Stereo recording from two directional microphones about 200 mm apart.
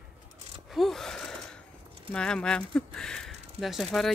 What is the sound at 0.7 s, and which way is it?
Gasp, centre (ahead or behind).